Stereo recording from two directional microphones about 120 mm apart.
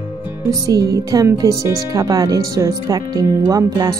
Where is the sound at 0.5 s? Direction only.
30° right (ahead or behind).